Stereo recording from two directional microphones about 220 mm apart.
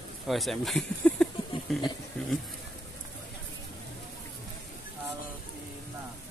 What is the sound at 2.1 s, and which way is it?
Bee, 5° left (ahead or behind).